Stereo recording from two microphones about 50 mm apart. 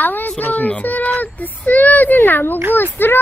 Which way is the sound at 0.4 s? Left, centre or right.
Left.